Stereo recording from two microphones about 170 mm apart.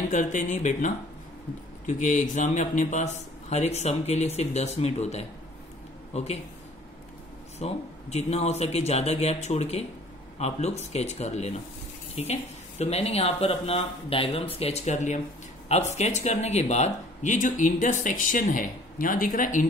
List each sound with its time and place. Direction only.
0.1 s speech: 45° left (ahead or behind)
7.5 s speech: 40° left (ahead or behind)